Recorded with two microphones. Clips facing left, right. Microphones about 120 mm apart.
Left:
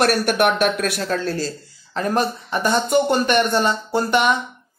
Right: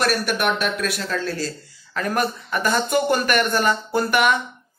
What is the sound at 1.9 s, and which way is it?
A woman's voice, 30° left (ahead or behind).